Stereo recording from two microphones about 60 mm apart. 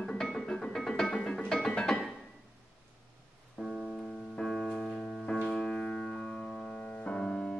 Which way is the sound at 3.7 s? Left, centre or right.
Centre.